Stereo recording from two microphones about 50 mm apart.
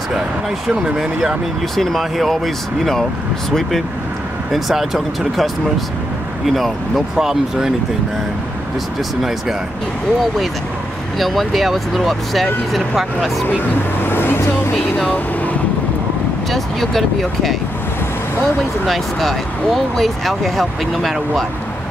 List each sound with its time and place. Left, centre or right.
0.8 s speech: centre
1.8 s speech: centre
4.5 s speech: centre
11.1 s speech: centre
13.9 s vehicle: left
16.5 s speech: centre
18.9 s speech: centre